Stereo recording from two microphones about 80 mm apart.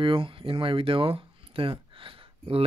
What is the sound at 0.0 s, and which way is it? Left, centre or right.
Speech, right.